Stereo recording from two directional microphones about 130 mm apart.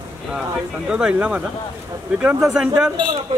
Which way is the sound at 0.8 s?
5° right (ahead or behind).